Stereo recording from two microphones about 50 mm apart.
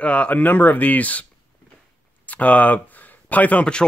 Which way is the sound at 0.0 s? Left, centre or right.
Left.